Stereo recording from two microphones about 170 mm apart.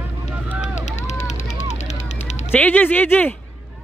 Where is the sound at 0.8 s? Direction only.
45° left (ahead or behind).